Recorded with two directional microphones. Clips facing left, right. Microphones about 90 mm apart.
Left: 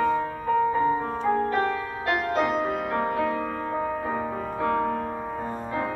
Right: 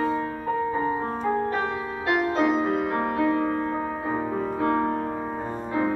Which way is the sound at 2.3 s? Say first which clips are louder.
Right 1 dB; 5° left (ahead or behind).